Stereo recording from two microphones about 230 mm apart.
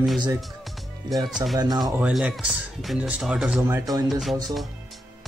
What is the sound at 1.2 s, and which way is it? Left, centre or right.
Speech, centre.